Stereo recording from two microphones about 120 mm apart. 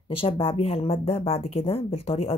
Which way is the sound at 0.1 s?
50° left (ahead or behind).